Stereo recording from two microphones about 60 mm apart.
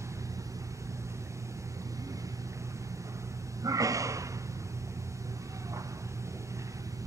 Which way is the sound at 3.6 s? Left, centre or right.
Right.